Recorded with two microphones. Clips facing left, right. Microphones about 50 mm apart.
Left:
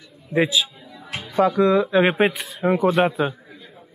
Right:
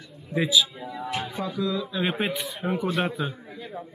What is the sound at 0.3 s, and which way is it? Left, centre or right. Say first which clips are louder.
Speech: left 5 dB; left.